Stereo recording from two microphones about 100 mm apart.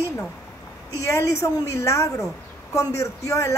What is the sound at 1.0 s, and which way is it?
A woman's voice, 30° left (ahead or behind).